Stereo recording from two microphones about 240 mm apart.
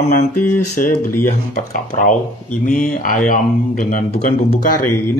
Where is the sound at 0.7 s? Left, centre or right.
Left.